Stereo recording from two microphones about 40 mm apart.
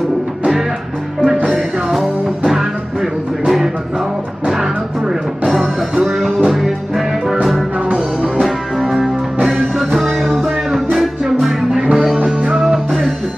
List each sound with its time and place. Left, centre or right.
1.5 s music: centre
5.5 s music: centre
9.9 s music: centre